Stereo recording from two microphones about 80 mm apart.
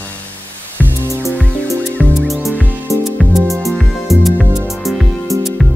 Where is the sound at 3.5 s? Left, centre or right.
Centre.